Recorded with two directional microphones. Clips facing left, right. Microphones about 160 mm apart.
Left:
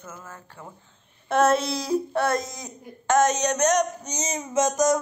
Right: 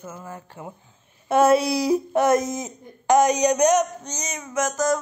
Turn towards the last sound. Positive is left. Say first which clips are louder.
# left 2 dB
turn(degrees=20)  # may be behind; listen again after turning